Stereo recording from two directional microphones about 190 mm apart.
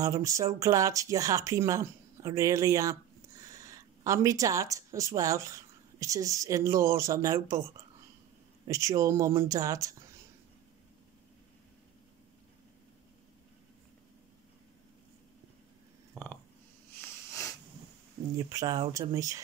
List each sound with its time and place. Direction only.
0.0 s speech: 15° right (ahead or behind)
8.6 s speech: 15° right (ahead or behind)
16.9 s a sound: 10° left (ahead or behind)
18.5 s speech: 20° right (ahead or behind)